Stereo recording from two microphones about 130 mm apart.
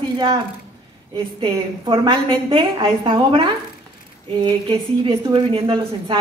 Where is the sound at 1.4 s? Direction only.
40° right (ahead or behind).